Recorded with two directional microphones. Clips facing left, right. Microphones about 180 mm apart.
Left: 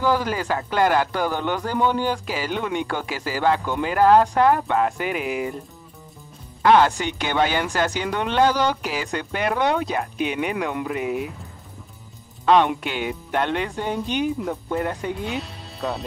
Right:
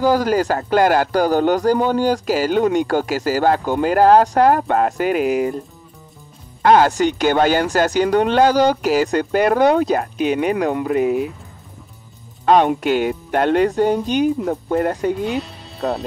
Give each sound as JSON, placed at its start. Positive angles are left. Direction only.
{"t": 0.0, "sound": "speech", "side_deg": -40}
{"t": 6.6, "sound": "speech", "side_deg": -40}
{"t": 12.4, "sound": "speech", "side_deg": -45}
{"t": 15.2, "sound": "speech", "side_deg": 0}